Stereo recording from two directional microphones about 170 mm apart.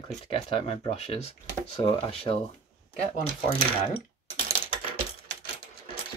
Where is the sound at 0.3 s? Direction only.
35° left (ahead or behind).